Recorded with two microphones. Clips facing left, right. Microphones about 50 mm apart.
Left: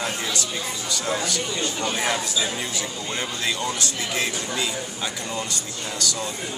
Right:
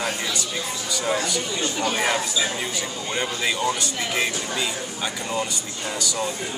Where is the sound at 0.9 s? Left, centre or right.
Centre.